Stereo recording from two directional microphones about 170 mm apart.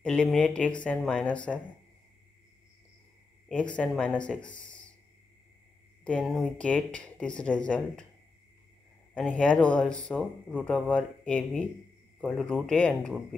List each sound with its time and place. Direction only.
0.0 s speech: 5° left (ahead or behind)
3.4 s speech: 5° left (ahead or behind)
6.0 s speech: 5° left (ahead or behind)
9.1 s speech: 5° left (ahead or behind)